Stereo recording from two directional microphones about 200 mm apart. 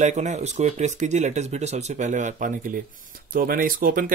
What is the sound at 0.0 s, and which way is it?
Speech, 35° right (ahead or behind).